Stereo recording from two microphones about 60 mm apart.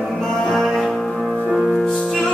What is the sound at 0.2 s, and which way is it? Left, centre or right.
Music, centre.